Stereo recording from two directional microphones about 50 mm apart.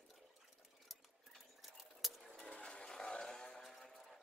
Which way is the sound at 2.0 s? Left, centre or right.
Centre.